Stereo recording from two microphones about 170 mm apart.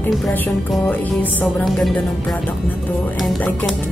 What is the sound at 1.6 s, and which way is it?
Speech, centre (ahead or behind).